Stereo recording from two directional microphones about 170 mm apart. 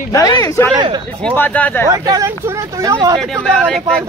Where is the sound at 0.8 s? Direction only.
25° right (ahead or behind).